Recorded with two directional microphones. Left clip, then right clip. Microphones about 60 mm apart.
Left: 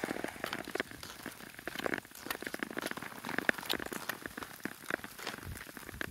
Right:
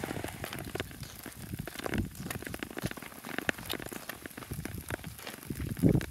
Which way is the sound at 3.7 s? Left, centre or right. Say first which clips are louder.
Left 2 dB; left.